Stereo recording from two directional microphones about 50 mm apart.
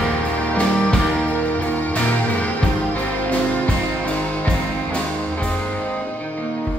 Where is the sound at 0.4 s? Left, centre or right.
Left.